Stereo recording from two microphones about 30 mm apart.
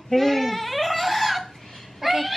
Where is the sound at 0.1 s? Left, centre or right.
Centre.